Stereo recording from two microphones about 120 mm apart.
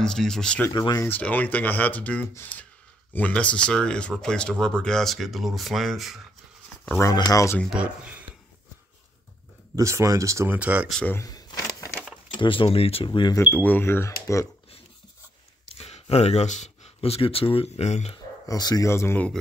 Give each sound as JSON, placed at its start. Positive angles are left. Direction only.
{"t": 0.0, "sound": "speech", "side_deg": 5}
{"t": 0.7, "sound": "speech", "side_deg": 35}
{"t": 1.0, "sound": "speech", "side_deg": 15}
{"t": 7.0, "sound": "speech", "side_deg": 30}
{"t": 7.7, "sound": "speech", "side_deg": -10}
{"t": 9.8, "sound": "speech", "side_deg": -25}
{"t": 10.6, "sound": "speech", "side_deg": -10}
{"t": 11.2, "sound": "a sound", "side_deg": 30}
{"t": 12.4, "sound": "speech", "side_deg": 45}
{"t": 13.5, "sound": "speech", "side_deg": 15}
{"t": 15.8, "sound": "speech", "side_deg": 60}
{"t": 18.1, "sound": "speech", "side_deg": 35}
{"t": 18.9, "sound": "speech", "side_deg": 20}